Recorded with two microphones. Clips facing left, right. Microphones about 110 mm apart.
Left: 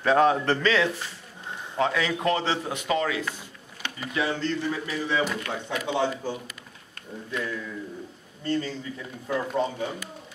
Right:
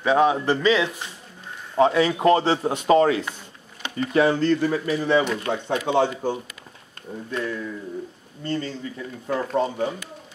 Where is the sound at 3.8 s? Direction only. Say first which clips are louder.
Right 3 dB; 20° right (ahead or behind).